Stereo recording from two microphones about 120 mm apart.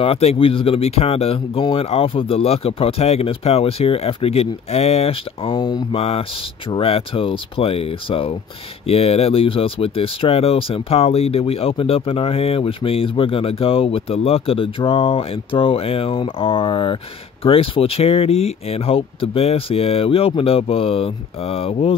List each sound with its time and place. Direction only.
0.0 s speech: 55° left (ahead or behind); by 5.9 s 40° left (ahead or behind)
5.9 s speech: 55° left (ahead or behind)